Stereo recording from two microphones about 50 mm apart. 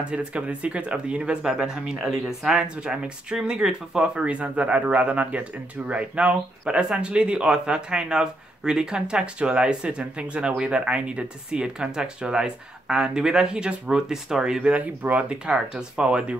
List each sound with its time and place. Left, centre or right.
0.1 s speech: right; by 2.5 s centre
2.5 s speech: right
14.6 s speech: right